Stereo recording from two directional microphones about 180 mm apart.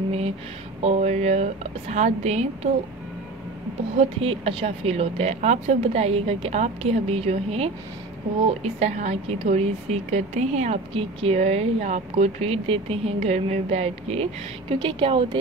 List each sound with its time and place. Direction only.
0.8 s a woman's voice: 35° right (ahead or behind)
4.0 s a woman's voice: 35° right (ahead or behind)